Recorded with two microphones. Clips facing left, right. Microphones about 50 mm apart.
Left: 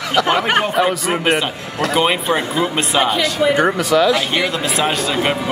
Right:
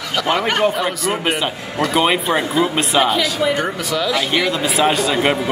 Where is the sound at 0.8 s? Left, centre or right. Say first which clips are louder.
Left 3 dB; centre.